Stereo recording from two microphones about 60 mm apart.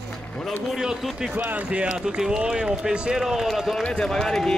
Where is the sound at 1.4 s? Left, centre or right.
Right.